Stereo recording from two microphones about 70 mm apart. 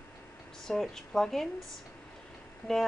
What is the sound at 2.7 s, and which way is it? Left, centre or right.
Speech, centre.